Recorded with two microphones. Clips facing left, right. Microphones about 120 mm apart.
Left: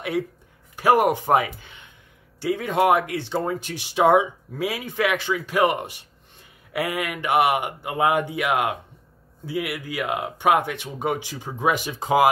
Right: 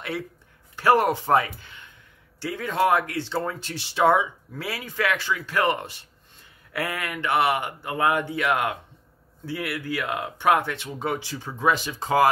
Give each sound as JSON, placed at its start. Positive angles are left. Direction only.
{"t": 0.7, "sound": "speech", "side_deg": 15}